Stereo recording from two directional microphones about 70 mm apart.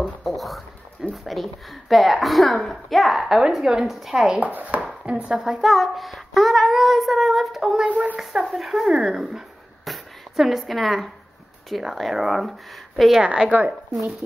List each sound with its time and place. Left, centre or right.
0.0 s a sound: centre
1.1 s speech: centre
4.4 s speech: right
5.0 s speech: centre
7.8 s speech: centre
8.2 s speech: centre
9.8 s a sound: centre
11.7 s speech: centre
13.2 s speech: centre